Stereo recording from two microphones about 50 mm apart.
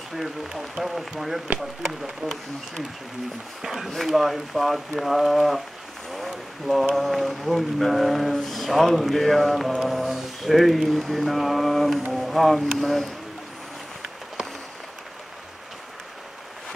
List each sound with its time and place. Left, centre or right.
0.1 s speech: centre